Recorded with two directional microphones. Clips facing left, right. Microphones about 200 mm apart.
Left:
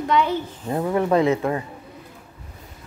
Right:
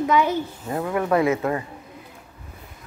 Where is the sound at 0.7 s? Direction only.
20° left (ahead or behind).